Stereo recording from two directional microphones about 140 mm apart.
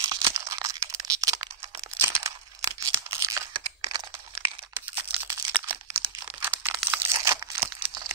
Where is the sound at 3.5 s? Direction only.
30° right (ahead or behind).